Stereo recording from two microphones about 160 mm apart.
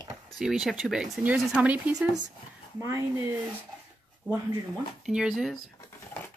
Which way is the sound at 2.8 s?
20° right (ahead or behind).